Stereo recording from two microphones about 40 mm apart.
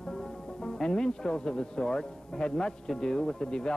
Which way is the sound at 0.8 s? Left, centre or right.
Centre.